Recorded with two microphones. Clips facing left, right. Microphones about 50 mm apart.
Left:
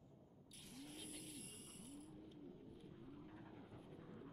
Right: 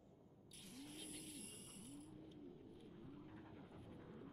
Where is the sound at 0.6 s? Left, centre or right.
Centre.